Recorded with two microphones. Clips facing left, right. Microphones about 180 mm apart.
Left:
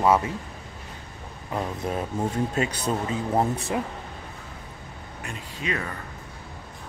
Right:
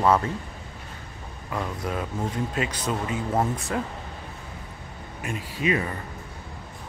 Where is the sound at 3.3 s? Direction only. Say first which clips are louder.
Left 2 dB; 20° left (ahead or behind).